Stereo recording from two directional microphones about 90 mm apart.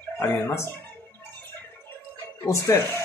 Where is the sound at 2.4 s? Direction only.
30° left (ahead or behind).